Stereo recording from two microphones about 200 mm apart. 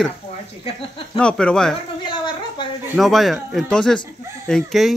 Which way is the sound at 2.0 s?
25° left (ahead or behind).